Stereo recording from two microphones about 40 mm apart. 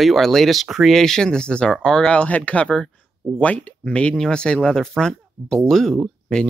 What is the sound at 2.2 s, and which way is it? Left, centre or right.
Speech, left.